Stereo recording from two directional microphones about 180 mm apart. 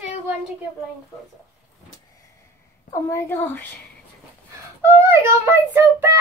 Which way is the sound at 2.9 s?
15° left (ahead or behind).